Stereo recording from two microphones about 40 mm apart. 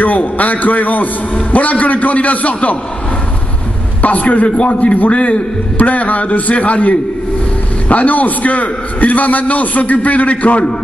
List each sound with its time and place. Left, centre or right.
0.0 s a man's voice: left
4.0 s a man's voice: left